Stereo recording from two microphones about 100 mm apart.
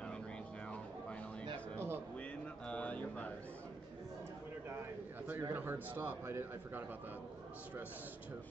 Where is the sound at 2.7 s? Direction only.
15° left (ahead or behind).